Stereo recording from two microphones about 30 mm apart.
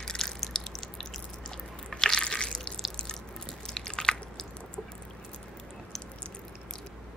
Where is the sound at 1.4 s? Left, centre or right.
Left.